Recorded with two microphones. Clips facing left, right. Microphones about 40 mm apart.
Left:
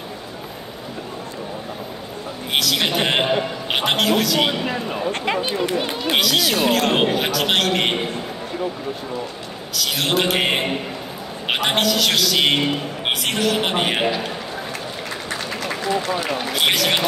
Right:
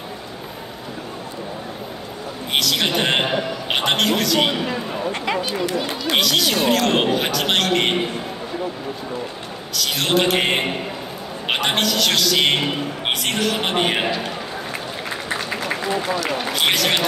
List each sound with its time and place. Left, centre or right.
2.5 s a man's voice: centre
5.4 s speech: left
6.1 s a man's voice: centre
9.8 s a man's voice: centre
15.2 s run: centre
16.3 s a man's voice: centre